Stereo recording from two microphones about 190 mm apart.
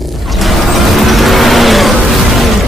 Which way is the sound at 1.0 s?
Centre (ahead or behind).